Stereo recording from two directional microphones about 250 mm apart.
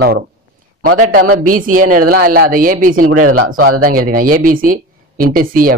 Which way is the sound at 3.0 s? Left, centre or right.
Right.